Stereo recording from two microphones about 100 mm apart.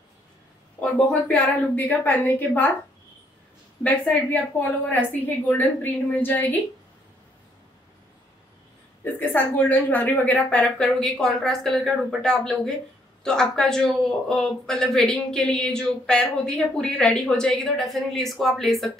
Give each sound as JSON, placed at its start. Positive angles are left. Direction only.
{"t": 0.7, "sound": "a woman's voice", "side_deg": 10}
{"t": 3.8, "sound": "a woman's voice", "side_deg": 15}
{"t": 9.0, "sound": "a woman's voice", "side_deg": 20}